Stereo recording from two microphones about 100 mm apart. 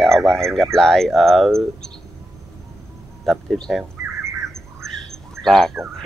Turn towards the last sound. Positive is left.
turn(degrees=5)  # may be behind; listen again after turning